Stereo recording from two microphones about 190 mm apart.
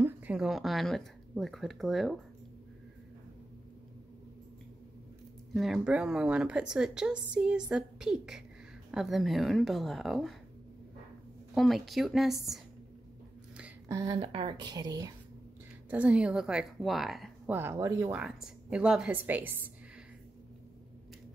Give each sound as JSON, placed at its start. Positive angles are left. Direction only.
{"t": 0.0, "sound": "speech", "side_deg": -5}
{"t": 5.5, "sound": "speech", "side_deg": 0}
{"t": 11.5, "sound": "speech", "side_deg": 0}
{"t": 13.8, "sound": "a woman's voice", "side_deg": -15}
{"t": 14.1, "sound": "a woman's voice", "side_deg": -30}
{"t": 15.9, "sound": "speech", "side_deg": -5}
{"t": 17.6, "sound": "a woman's voice", "side_deg": -15}